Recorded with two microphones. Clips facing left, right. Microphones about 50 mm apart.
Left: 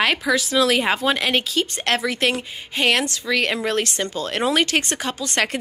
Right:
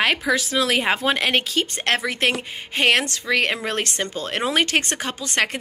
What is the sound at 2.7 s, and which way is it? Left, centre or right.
Speech, right.